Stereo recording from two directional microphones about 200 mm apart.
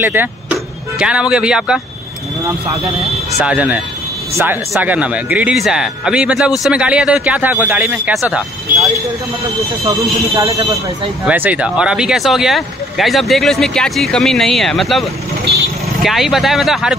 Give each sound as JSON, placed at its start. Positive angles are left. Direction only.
{"t": 0.0, "sound": "speech", "side_deg": -10}
{"t": 3.3, "sound": "speech", "side_deg": -5}
{"t": 8.7, "sound": "speech", "side_deg": -40}
{"t": 11.2, "sound": "speech", "side_deg": -10}